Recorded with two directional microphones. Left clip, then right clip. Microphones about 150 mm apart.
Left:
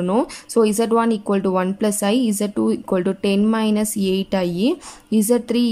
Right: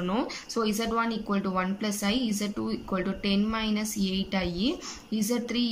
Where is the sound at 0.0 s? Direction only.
40° left (ahead or behind).